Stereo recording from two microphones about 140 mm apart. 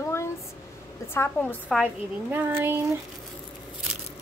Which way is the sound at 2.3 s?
15° right (ahead or behind).